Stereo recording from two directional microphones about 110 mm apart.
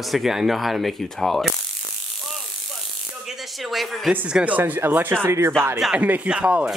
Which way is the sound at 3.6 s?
Centre (ahead or behind).